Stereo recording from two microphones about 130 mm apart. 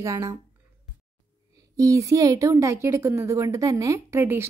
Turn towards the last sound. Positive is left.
turn(degrees=-20)  # may be behind; listen again after turning